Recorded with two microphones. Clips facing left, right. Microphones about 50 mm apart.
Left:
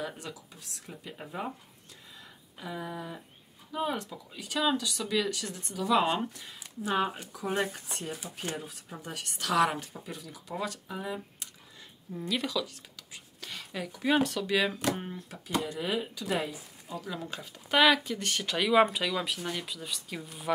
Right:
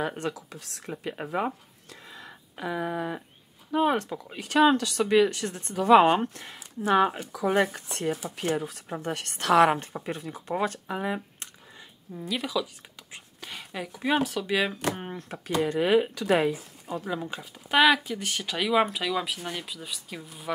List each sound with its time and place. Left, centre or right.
0.3 s speech: right
2.1 s a sound: right
3.7 s speech: right
5.1 s speech: right
9.4 s speech: right
12.1 s speech: centre
15.0 s speech: right
17.1 s speech: right
17.4 s speech: centre